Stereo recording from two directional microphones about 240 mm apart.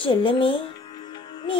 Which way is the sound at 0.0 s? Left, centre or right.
Left.